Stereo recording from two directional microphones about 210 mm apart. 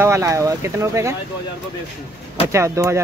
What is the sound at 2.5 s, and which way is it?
Speech, 15° right (ahead or behind).